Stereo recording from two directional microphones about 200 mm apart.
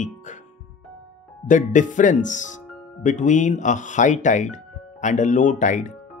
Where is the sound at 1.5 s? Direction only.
40° left (ahead or behind).